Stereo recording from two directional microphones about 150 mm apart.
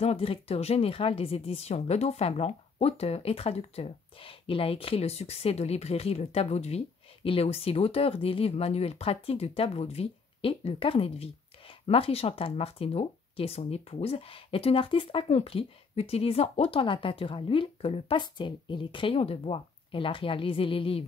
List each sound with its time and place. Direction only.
0.0 s speech: 40° left (ahead or behind)